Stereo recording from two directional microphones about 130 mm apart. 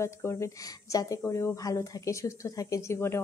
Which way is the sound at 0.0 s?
20° left (ahead or behind).